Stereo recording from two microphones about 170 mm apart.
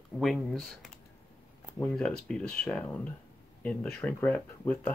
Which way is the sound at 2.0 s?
5° left (ahead or behind).